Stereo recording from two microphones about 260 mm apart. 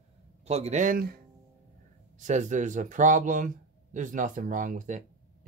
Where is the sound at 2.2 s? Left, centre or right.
Right.